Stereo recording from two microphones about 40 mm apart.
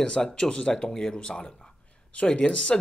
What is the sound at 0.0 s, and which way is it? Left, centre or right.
Speech, left.